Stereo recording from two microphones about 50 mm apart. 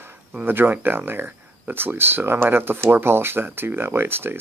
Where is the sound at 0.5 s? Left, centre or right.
Right.